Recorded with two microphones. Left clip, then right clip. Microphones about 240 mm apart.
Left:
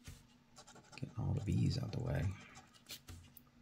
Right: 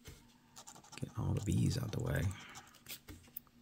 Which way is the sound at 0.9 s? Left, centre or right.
Right.